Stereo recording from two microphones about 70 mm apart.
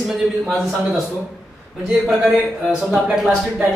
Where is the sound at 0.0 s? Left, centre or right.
Centre.